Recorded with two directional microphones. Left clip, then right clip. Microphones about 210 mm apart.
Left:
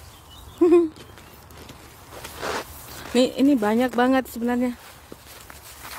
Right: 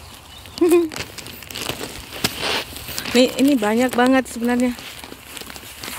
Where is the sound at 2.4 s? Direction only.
15° right (ahead or behind).